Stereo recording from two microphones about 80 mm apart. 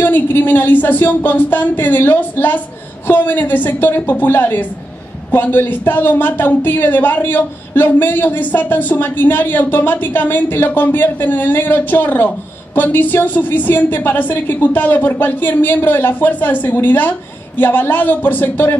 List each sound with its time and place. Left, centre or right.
0.0 s a woman's voice: left